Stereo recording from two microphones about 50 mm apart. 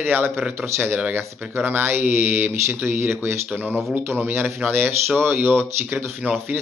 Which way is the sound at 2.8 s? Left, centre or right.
Right.